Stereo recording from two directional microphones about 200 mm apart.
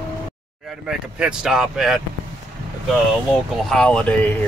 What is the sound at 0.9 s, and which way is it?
Speech, 5° right (ahead or behind).